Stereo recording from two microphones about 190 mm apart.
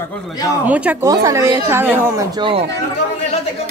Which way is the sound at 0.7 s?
5° right (ahead or behind).